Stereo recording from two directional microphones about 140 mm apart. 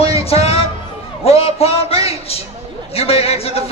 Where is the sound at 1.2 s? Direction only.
45° left (ahead or behind).